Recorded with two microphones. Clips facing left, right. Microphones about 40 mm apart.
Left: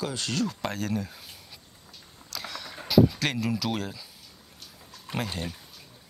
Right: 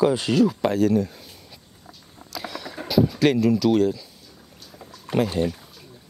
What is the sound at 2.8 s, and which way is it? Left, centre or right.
Speech, centre.